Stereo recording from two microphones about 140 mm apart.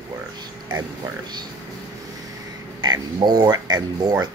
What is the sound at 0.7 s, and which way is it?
Speech, 30° right (ahead or behind).